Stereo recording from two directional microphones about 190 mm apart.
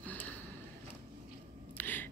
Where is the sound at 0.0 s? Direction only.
10° left (ahead or behind).